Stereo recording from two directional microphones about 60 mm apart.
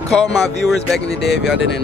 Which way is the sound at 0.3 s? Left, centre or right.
Centre.